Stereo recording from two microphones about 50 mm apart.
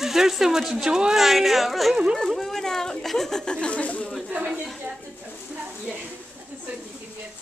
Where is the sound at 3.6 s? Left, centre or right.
Left.